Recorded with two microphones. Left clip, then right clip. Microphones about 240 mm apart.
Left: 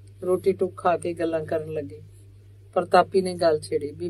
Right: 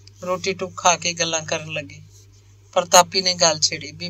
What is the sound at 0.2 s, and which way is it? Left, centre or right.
Speech, right.